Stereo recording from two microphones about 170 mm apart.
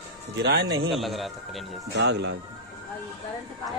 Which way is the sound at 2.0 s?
85° right.